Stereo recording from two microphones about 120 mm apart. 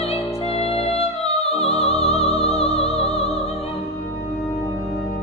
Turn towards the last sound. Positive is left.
turn(degrees=55)  # may be behind; listen again after turning